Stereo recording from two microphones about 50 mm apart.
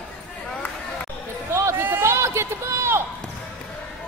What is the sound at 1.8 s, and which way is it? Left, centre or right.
Run, right.